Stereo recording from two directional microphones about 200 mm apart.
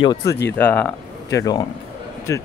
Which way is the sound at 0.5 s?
10° left (ahead or behind).